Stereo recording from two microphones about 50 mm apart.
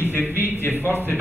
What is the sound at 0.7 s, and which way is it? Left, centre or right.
Speech, right.